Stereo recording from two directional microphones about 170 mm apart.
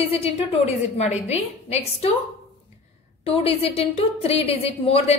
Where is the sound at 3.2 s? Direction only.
35° left (ahead or behind).